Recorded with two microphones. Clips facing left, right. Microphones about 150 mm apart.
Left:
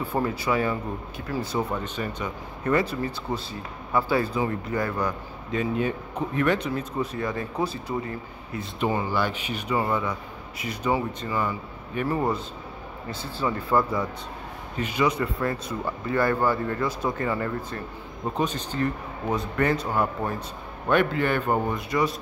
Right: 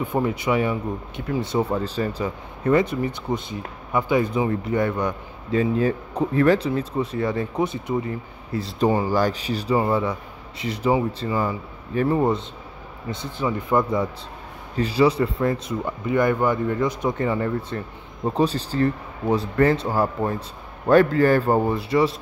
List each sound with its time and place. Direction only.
0.0 s speech: 20° right (ahead or behind)
8.1 s speech: 35° right (ahead or behind); by 14.0 s 15° right (ahead or behind)
14.8 s speech: 30° right (ahead or behind)